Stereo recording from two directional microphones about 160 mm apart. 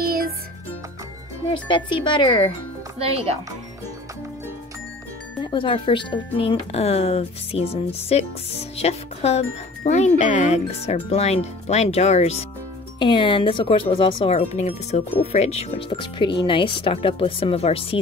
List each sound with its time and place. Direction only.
0.0 s music: 65° right (ahead or behind)
1.5 s speech: 30° left (ahead or behind)
3.0 s speech: 40° right (ahead or behind)
5.4 s speech: 30° left (ahead or behind)
13.0 s speech: 30° left (ahead or behind)